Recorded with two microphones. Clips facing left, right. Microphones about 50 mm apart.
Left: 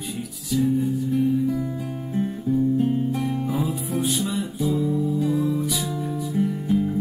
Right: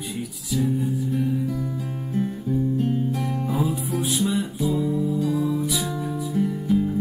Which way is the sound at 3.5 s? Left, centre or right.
Centre.